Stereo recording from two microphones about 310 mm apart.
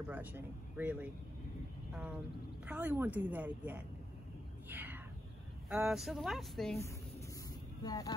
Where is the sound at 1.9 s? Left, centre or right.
Centre.